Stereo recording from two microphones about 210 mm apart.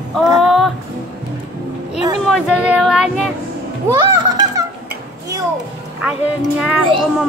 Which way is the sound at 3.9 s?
20° right (ahead or behind).